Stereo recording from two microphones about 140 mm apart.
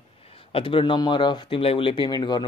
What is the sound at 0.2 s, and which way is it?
Speech, 45° left (ahead or behind).